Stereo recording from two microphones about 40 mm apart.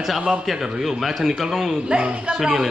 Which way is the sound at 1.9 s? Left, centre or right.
Right.